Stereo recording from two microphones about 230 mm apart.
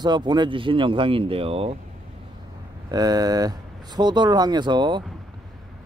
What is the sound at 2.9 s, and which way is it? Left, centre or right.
Speech, centre.